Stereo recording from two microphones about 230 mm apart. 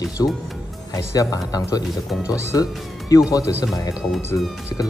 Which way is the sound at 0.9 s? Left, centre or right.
Centre.